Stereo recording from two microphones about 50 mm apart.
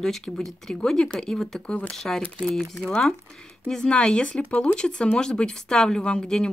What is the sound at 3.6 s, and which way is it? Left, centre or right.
A woman's voice, centre.